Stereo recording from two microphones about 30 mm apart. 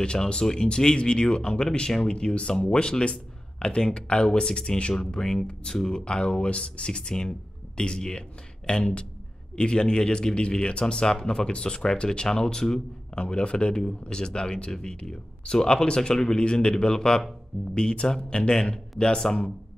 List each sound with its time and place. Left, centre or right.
0.0 s speech: left
4.6 s speech: left
5.1 s speech: left
11.4 s speech: left
16.3 s speech: left